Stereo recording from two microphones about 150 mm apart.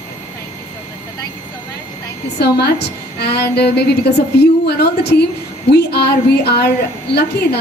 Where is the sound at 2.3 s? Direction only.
90° left.